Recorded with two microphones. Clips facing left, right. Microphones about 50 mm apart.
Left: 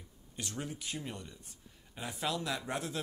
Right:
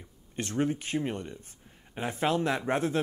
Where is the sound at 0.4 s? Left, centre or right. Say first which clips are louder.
Right 12 dB; right.